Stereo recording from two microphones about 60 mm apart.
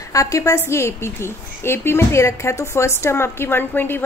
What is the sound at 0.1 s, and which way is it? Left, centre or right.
A woman's voice, left.